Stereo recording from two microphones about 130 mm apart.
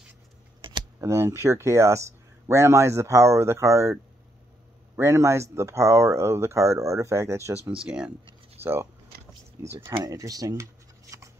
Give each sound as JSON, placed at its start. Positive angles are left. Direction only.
{"t": 0.6, "sound": "a sound", "side_deg": -40}
{"t": 1.0, "sound": "speech", "side_deg": -20}
{"t": 4.9, "sound": "speech", "side_deg": -20}
{"t": 7.8, "sound": "speech", "side_deg": -5}
{"t": 8.6, "sound": "speech", "side_deg": -15}